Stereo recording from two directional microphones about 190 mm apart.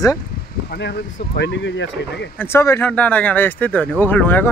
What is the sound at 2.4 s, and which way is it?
Speech, 15° left (ahead or behind).